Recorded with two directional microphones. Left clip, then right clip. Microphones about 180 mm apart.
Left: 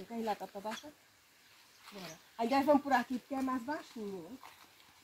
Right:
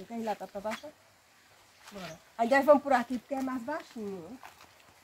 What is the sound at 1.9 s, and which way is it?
Speech, centre (ahead or behind).